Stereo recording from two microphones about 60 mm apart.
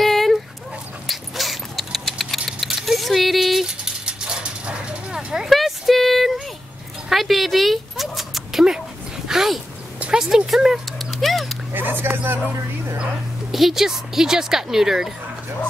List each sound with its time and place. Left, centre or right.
0.0 s dog: centre
1.0 s a sound: centre
3.6 s dog: centre
9.9 s cat: centre
11.7 s a sound: right
13.0 s speech: centre